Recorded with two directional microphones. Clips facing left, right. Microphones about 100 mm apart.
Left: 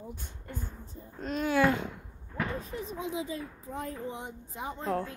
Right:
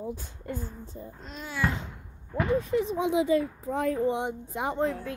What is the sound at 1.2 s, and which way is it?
Speech, 55° left (ahead or behind).